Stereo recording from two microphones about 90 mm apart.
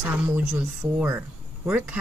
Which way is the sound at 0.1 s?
15° right (ahead or behind).